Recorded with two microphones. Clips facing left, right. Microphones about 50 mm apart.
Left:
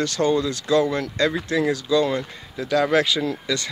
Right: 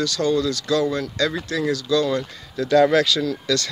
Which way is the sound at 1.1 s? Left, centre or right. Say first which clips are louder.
Left 2 dB; left.